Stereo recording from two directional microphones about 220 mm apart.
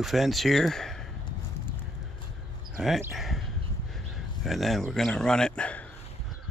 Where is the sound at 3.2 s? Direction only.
Centre (ahead or behind).